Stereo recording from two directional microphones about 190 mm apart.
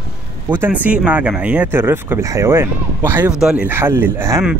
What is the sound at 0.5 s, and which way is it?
Speech, 10° right (ahead or behind).